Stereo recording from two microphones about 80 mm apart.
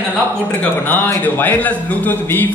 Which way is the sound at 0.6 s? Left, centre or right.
Left.